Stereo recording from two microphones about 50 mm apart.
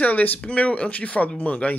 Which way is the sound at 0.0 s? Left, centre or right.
Left.